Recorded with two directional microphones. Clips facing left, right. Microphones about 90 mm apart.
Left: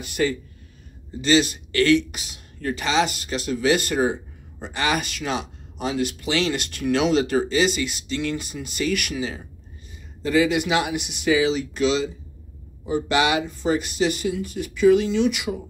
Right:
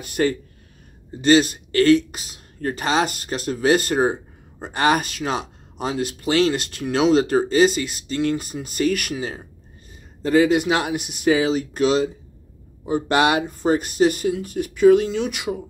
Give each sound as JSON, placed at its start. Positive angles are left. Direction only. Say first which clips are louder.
{"t": 0.0, "sound": "speech", "louder": "right 2 dB", "side_deg": -45}